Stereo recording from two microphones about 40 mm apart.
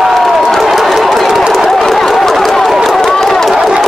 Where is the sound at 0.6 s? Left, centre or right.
Centre.